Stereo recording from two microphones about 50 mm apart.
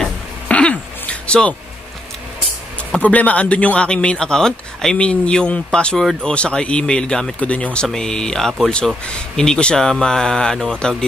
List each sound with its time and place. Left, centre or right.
0.5 s a sound: left
3.0 s a man's voice: left; by 7.3 s centre
7.3 s speech: left